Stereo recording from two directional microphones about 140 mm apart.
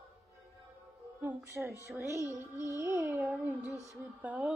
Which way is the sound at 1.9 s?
20° right (ahead or behind).